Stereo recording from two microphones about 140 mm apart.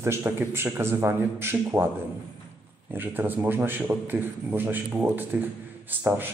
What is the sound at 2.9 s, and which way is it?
A man's voice, 15° right (ahead or behind).